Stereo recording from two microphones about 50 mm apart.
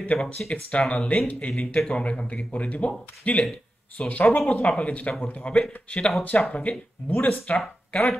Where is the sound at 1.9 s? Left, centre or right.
Left.